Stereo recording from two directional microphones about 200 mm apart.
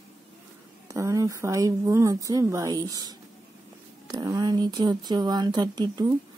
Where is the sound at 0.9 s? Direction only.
15° right (ahead or behind).